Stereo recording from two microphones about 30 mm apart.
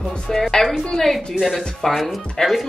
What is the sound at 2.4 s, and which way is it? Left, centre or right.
Speech, left.